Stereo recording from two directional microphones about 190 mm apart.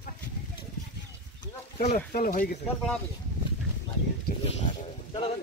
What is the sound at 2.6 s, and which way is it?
Speech, 5° left (ahead or behind).